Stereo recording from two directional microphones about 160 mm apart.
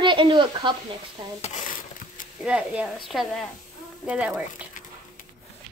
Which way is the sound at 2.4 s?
5° right (ahead or behind).